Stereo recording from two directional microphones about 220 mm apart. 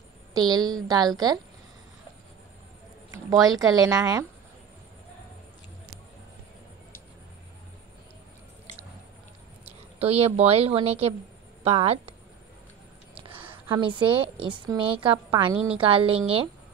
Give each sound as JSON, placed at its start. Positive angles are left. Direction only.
{"t": 0.3, "sound": "speech", "side_deg": -20}
{"t": 3.1, "sound": "speech", "side_deg": -15}
{"t": 9.9, "sound": "a woman's voice", "side_deg": -30}
{"t": 13.5, "sound": "a woman's voice", "side_deg": -20}